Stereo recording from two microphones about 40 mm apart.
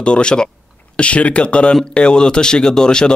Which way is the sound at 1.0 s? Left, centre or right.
Left.